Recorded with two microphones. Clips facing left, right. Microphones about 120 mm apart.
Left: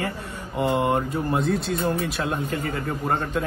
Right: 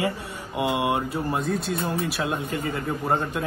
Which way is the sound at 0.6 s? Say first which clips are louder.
Left 2 dB; 5° right (ahead or behind).